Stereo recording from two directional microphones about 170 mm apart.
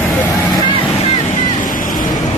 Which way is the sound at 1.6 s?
55° left (ahead or behind).